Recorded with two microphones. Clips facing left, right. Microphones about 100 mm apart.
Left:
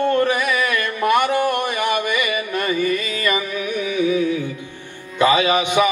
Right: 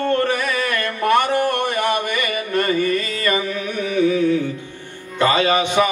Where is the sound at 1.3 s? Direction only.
15° left (ahead or behind).